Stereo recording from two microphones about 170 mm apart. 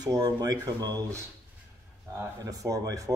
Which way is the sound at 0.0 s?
25° right (ahead or behind).